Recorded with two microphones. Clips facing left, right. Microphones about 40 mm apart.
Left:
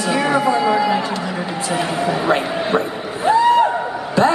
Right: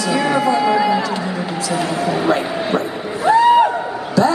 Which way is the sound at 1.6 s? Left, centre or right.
Left.